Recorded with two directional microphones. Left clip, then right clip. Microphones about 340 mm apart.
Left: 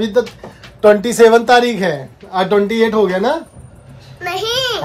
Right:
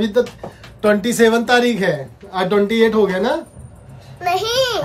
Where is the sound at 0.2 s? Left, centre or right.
Centre.